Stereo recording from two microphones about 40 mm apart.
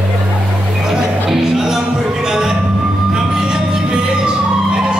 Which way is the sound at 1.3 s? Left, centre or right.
Centre.